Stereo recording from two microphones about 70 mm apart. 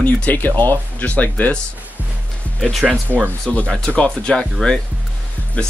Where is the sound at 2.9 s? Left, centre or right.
Right.